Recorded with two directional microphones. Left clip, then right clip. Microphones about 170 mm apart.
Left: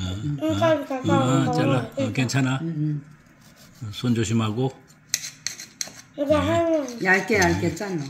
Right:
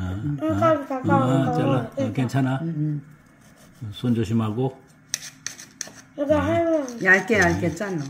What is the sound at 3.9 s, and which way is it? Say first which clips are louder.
Speech: even; 10° right (ahead or behind).